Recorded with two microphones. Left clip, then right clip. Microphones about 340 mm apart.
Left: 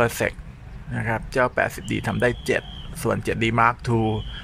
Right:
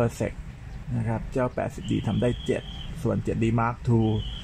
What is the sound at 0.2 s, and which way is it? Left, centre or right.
Speech, left.